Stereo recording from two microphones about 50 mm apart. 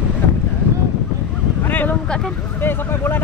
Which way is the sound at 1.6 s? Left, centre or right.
Left.